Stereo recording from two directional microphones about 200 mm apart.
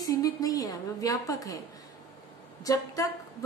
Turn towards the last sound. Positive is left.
turn(degrees=15)  # may be behind; listen again after turning